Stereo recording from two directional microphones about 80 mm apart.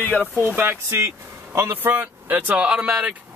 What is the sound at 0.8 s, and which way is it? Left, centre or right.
Speech, right.